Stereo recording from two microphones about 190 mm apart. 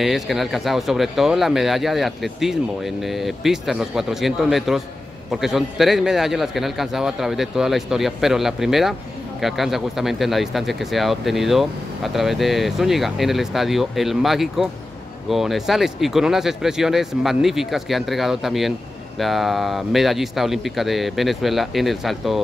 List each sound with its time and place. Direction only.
0.0 s speech: centre (ahead or behind)